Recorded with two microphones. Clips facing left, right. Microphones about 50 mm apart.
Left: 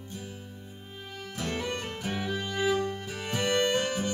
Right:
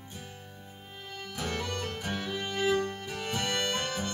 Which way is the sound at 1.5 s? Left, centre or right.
Centre.